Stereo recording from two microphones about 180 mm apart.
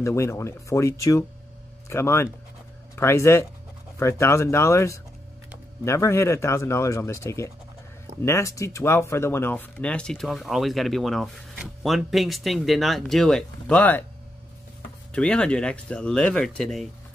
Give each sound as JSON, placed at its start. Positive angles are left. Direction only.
{"t": 0.0, "sound": "speech", "side_deg": 15}
{"t": 15.1, "sound": "speech", "side_deg": 5}